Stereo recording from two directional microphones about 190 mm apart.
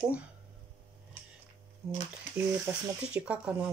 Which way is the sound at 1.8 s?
Centre (ahead or behind).